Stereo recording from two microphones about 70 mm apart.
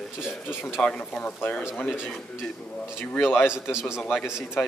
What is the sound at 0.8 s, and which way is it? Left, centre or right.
Speech, centre.